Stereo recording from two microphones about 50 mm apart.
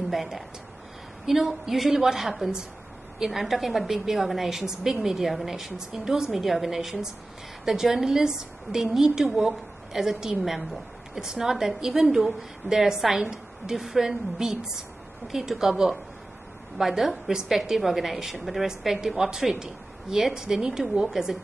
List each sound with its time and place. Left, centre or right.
0.1 s a woman's voice: centre
20.8 s a woman's voice: right
21.1 s a woman's voice: centre